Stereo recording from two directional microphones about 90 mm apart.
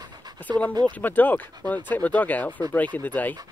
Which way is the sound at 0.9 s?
20° left (ahead or behind).